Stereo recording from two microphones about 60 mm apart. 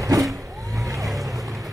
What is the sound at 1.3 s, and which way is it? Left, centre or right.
Boat, right.